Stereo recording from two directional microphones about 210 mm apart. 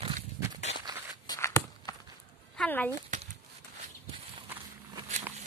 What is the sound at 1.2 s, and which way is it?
Walk, 15° left (ahead or behind).